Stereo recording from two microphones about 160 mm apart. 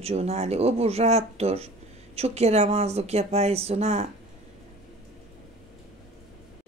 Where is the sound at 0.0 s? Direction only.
40° right (ahead or behind).